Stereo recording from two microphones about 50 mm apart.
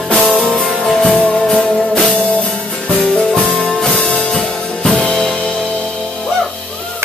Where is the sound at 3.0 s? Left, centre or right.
Centre.